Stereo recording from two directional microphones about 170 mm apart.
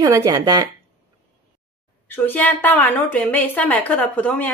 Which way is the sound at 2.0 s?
10° left (ahead or behind).